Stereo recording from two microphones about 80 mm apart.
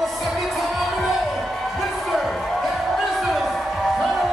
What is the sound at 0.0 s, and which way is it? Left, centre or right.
Music, centre.